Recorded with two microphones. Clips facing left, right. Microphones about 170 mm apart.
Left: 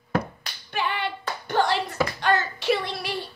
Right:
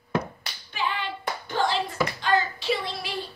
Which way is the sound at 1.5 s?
60° left (ahead or behind).